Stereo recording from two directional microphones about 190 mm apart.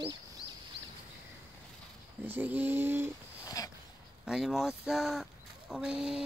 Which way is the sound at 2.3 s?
10° right (ahead or behind).